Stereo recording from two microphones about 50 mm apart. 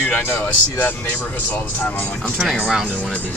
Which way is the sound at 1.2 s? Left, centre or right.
Left.